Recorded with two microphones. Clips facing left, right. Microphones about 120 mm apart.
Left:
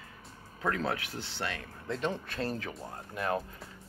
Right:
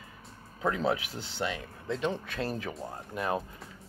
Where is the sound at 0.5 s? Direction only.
20° right (ahead or behind).